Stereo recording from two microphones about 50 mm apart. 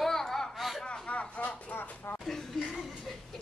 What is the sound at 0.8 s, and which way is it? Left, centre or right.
Speech, left.